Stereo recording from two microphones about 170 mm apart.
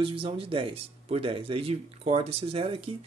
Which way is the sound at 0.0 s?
30° right (ahead or behind).